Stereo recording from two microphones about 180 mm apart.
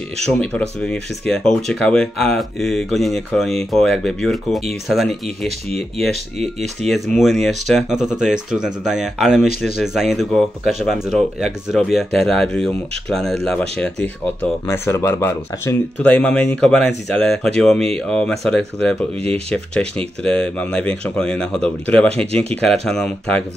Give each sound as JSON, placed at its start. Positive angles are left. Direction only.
{"t": 0.2, "sound": "speech", "side_deg": 5}
{"t": 22.3, "sound": "speech", "side_deg": -35}
{"t": 22.6, "sound": "speech", "side_deg": 5}